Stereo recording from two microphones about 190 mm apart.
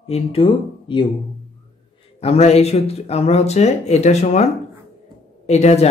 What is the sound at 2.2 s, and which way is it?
Speech, 35° left (ahead or behind).